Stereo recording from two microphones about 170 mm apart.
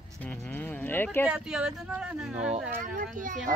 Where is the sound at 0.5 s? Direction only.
10° left (ahead or behind).